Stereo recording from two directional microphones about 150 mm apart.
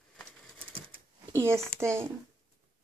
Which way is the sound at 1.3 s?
15° right (ahead or behind).